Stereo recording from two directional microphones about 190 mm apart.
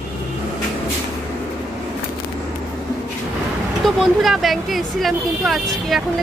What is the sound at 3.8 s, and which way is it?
Speech, centre (ahead or behind).